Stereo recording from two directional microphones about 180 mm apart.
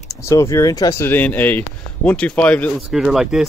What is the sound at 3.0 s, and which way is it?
Speech, 5° right (ahead or behind).